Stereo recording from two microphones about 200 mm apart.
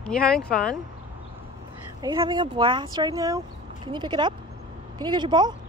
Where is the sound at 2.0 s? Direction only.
20° right (ahead or behind).